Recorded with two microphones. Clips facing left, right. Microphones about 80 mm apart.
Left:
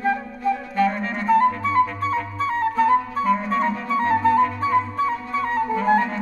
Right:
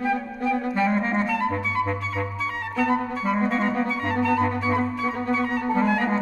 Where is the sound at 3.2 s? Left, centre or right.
Right.